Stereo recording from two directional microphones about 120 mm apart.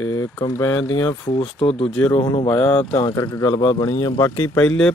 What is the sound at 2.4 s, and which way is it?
Speech, 10° left (ahead or behind).